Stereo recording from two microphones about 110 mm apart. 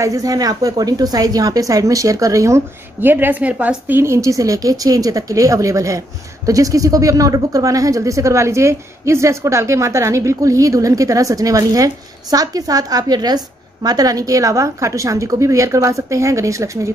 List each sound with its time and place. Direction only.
0.0 s a woman's voice: 30° right (ahead or behind)